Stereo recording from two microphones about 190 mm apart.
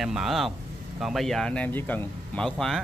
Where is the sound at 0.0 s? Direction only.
Centre (ahead or behind).